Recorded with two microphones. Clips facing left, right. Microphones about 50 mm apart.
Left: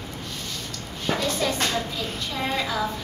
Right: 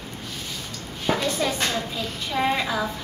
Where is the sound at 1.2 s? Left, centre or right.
Centre.